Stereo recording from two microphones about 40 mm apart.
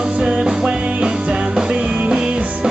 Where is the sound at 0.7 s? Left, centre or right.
Right.